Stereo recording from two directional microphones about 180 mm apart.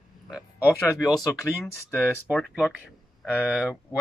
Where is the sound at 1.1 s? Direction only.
20° left (ahead or behind).